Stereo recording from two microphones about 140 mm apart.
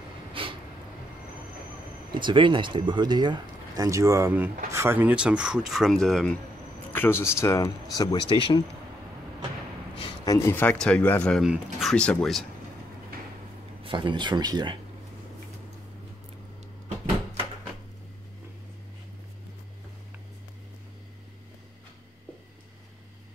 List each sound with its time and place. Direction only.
0.3 s a sound: 40° right (ahead or behind)
2.1 s speech: 35° right (ahead or behind); by 6.3 s centre (ahead or behind)
6.9 s speech: 15° left (ahead or behind)
8.4 s speech: 40° left (ahead or behind)
10.2 s speech: 25° left (ahead or behind)
10.5 s speech: 10° left (ahead or behind)
13.8 s speech: 35° right (ahead or behind)